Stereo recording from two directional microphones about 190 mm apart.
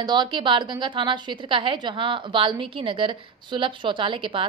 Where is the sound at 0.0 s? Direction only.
25° right (ahead or behind).